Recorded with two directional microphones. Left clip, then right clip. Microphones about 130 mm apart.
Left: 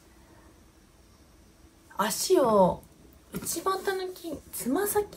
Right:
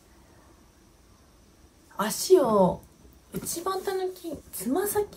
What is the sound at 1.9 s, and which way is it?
Speech, 10° left (ahead or behind).